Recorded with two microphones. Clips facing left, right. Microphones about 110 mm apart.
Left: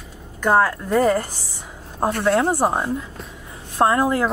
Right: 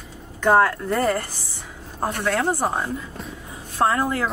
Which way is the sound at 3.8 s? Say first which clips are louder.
Left 3 dB; 5° left (ahead or behind).